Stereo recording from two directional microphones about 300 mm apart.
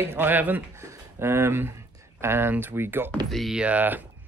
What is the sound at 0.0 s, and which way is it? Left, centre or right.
Speech, centre.